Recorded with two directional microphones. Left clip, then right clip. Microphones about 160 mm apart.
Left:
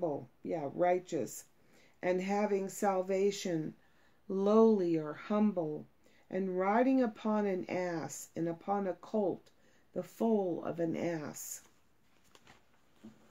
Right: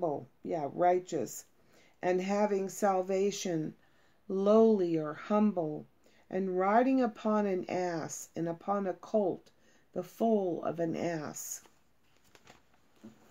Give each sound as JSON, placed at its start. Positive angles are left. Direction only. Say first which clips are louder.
{"t": 0.0, "sound": "a woman's voice", "louder": "right 2 dB", "side_deg": -15}